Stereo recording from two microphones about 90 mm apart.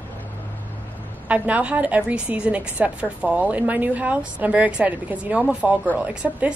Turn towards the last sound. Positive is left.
turn(degrees=-10)  # may be behind; listen again after turning